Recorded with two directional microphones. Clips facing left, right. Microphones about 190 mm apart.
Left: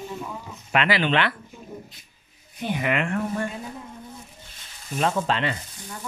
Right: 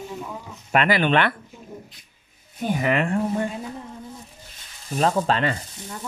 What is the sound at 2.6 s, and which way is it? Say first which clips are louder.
Speech: right 3 dB; 40° right (ahead or behind).